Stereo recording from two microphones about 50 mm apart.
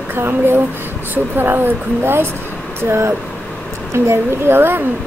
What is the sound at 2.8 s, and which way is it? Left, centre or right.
A woman's voice, right.